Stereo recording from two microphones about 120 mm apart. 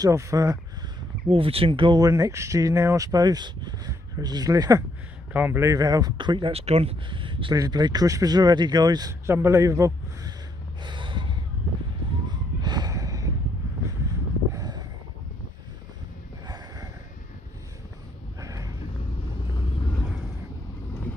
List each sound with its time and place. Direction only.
0.0 s speech: 25° right (ahead or behind)
1.3 s speech: 50° right (ahead or behind)
2.0 s speech: 30° right (ahead or behind)
5.3 s a man's voice: 15° right (ahead or behind)
5.6 s speech: 30° right (ahead or behind)
6.5 s speech: 55° right (ahead or behind)
7.5 s speech: 30° right (ahead or behind)
10.8 s snort: 40° right (ahead or behind)
12.3 s gasp: 35° right (ahead or behind)
14.0 s a sound: 30° right (ahead or behind)
16.4 s snort: 30° right (ahead or behind)
18.4 s a sound: 25° right (ahead or behind)